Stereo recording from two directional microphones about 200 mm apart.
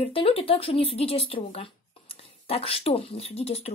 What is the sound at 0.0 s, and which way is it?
A woman's voice, 30° left (ahead or behind).